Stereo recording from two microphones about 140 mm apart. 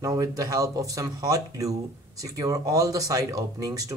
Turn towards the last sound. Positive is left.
turn(degrees=-25)  # may be behind; listen again after turning